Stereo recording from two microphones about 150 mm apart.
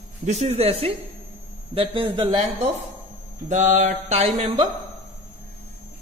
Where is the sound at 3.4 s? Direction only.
55° right (ahead or behind).